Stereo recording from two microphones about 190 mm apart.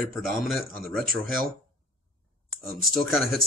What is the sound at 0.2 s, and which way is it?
Speech, centre (ahead or behind).